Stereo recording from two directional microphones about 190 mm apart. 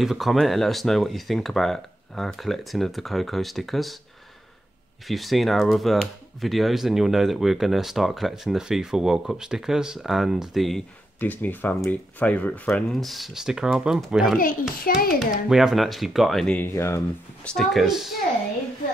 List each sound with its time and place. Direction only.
0.0 s speech: centre (ahead or behind)
5.0 s speech: centre (ahead or behind)
14.8 s a child's voice: 50° left (ahead or behind)
15.4 s speech: centre (ahead or behind); by 17.0 s 15° left (ahead or behind)
17.5 s speech: centre (ahead or behind)